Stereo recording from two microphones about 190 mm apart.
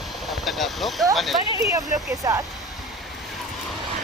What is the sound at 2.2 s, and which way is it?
Speech, 15° right (ahead or behind).